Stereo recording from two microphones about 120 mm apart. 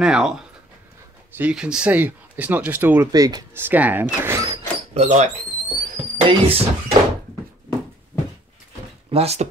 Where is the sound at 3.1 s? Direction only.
35° right (ahead or behind).